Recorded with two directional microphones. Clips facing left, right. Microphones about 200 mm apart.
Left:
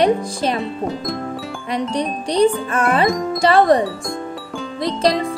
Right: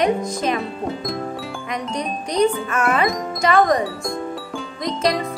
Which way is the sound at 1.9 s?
30° left (ahead or behind).